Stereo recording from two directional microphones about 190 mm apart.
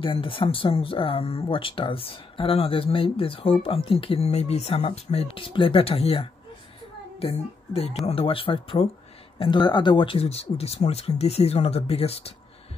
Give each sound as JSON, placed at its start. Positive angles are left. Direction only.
{"t": 0.0, "sound": "a child's voice", "side_deg": 25}